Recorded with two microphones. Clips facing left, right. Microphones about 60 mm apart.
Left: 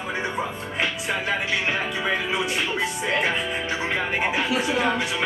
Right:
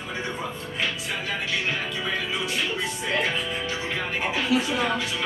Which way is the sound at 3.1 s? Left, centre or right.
Left.